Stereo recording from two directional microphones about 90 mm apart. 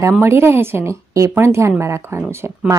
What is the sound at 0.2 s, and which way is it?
A woman's voice, 25° right (ahead or behind).